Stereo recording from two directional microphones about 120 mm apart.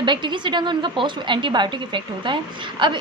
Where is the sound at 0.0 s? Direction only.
40° right (ahead or behind).